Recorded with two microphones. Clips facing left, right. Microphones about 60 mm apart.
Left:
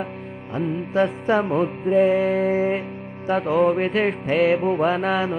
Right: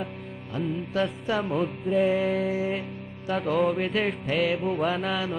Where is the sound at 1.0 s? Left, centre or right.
Left.